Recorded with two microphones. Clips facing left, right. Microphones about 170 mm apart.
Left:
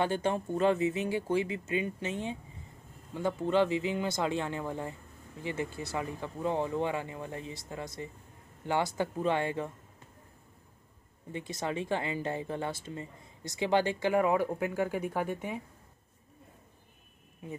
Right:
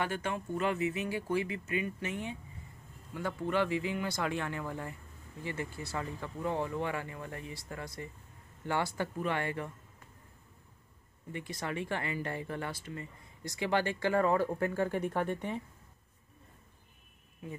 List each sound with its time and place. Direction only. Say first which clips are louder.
0.0 s speech: left 5 dB; 30° left (ahead or behind)
11.3 s speech: left 3 dB; 20° left (ahead or behind); by 15.6 s 5° left (ahead or behind)